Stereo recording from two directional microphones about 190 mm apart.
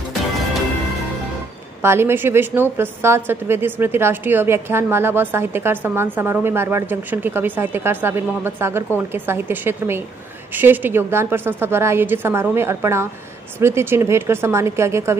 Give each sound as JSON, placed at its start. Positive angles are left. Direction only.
{"t": 1.8, "sound": "a woman's voice", "side_deg": -15}